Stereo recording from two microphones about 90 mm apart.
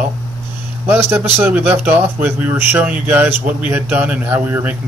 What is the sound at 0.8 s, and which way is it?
Speech, 25° right (ahead or behind).